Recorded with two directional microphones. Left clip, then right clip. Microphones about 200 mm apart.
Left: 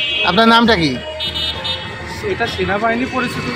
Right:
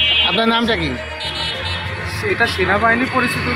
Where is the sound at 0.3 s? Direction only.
35° left (ahead or behind).